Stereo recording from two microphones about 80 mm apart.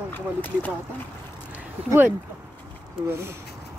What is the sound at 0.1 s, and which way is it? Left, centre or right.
Speech, left.